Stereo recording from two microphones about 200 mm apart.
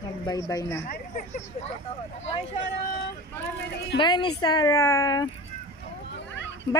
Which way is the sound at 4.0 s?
25° left (ahead or behind).